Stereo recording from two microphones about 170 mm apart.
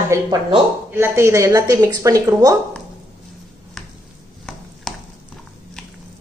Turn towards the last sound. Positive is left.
turn(degrees=0)  # may be behind; listen again after turning